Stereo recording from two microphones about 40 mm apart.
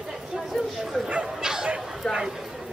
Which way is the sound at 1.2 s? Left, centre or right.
Centre.